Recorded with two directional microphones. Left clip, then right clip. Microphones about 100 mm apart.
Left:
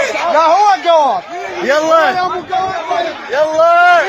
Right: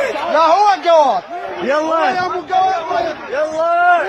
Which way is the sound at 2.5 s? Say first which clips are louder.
Right 1 dB; centre (ahead or behind).